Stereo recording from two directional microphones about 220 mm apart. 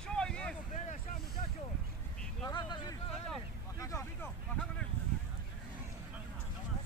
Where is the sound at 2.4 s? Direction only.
20° left (ahead or behind).